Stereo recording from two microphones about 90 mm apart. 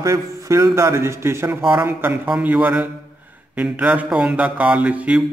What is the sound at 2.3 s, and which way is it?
Mantra, 15° right (ahead or behind).